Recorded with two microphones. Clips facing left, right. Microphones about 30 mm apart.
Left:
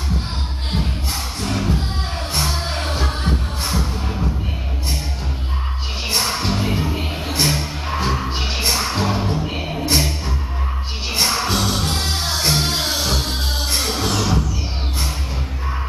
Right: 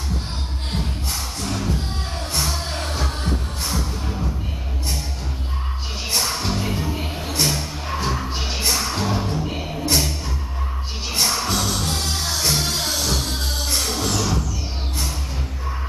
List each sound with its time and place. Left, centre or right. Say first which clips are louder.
1.4 s music: left 4 dB; left
6.0 s music: left 2 dB; left